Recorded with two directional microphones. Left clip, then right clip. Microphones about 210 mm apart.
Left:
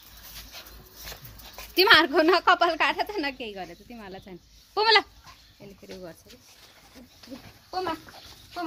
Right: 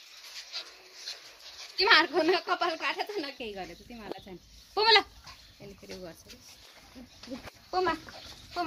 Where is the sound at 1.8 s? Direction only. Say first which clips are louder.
Left 5 dB; 55° left (ahead or behind).